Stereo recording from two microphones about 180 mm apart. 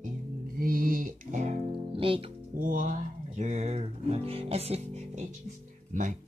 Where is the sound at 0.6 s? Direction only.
55° right (ahead or behind); by 2.3 s 30° right (ahead or behind).